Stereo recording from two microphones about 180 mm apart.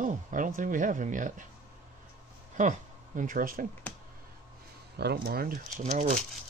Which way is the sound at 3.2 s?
50° right (ahead or behind).